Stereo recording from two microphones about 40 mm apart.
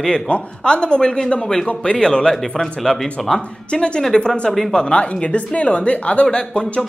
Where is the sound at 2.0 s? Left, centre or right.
Centre.